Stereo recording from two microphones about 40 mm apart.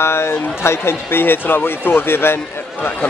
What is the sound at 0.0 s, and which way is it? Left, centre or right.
Speech, left.